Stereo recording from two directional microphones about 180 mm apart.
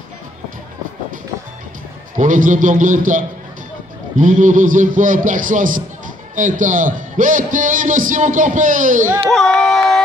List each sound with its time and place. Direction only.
2.1 s a man's voice: 45° right (ahead or behind)
9.3 s music: centre (ahead or behind)